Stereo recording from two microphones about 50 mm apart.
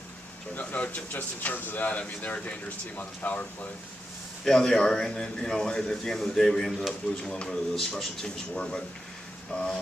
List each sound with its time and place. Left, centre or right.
0.6 s speech: left
4.5 s a man's voice: centre